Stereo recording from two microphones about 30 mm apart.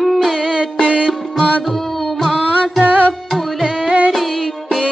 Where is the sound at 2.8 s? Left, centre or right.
Right.